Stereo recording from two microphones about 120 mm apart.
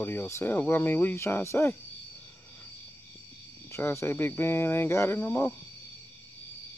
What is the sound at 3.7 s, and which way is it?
Speech, 25° left (ahead or behind).